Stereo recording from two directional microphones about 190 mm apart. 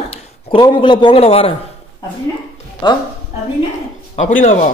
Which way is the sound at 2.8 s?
25° left (ahead or behind).